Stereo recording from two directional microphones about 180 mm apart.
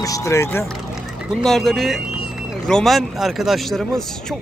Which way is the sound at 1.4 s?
Centre (ahead or behind).